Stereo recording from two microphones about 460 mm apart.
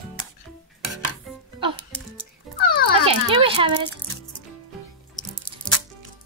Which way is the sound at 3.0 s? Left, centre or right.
Centre.